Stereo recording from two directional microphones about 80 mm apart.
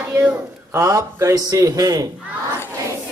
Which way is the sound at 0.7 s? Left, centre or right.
Right.